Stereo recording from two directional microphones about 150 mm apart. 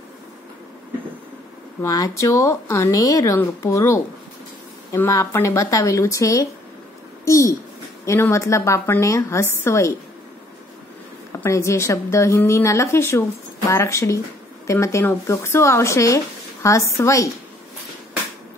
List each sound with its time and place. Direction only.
1.8 s speech: 20° left (ahead or behind)
11.4 s speech: 20° left (ahead or behind)